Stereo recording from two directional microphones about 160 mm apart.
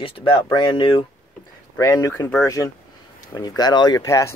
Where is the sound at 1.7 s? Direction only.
20° left (ahead or behind).